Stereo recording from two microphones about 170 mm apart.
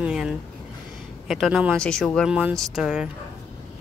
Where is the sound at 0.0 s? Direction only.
5° right (ahead or behind).